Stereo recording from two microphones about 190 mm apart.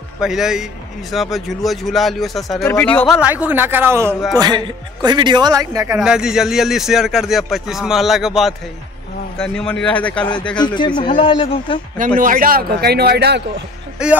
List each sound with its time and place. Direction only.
0.2 s speech: centre (ahead or behind)
3.2 s a man's voice: 10° right (ahead or behind)
5.9 s speech: 5° right (ahead or behind)
11.0 s a man's voice: 25° left (ahead or behind)
12.2 s speech: 45° right (ahead or behind)
14.0 s speech: 5° right (ahead or behind)